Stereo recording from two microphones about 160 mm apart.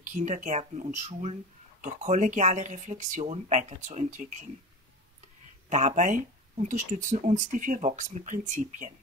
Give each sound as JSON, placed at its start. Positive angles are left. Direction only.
{"t": 0.0, "sound": "speech", "side_deg": -50}
{"t": 5.7, "sound": "speech", "side_deg": -50}